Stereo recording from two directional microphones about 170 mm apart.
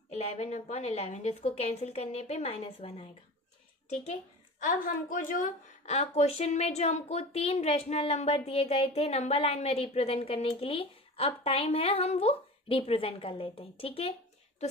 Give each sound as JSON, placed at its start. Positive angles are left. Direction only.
{"t": 0.1, "sound": "a woman's voice", "side_deg": 40}
{"t": 4.8, "sound": "a woman's voice", "side_deg": 50}